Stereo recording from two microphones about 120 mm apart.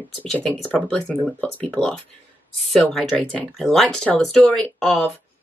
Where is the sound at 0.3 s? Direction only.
5° left (ahead or behind).